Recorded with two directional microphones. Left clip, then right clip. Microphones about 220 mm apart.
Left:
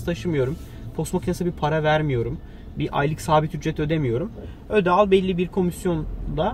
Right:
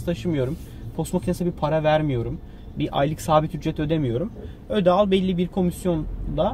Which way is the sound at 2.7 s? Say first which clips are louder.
Right 1 dB; 15° right (ahead or behind).